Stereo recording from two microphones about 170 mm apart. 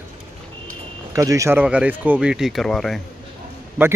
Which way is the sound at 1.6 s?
5° right (ahead or behind).